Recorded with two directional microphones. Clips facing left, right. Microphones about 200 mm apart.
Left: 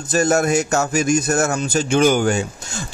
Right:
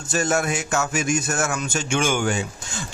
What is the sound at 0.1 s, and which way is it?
Speech, 40° left (ahead or behind).